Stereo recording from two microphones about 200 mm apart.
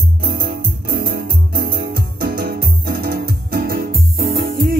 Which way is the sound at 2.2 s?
50° right (ahead or behind).